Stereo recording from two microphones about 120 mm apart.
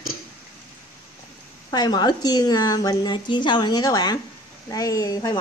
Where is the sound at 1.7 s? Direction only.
35° left (ahead or behind).